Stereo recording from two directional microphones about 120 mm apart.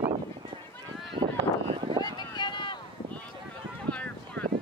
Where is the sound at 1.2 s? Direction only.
45° right (ahead or behind).